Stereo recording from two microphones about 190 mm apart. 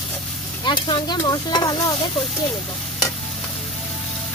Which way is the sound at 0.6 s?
25° left (ahead or behind).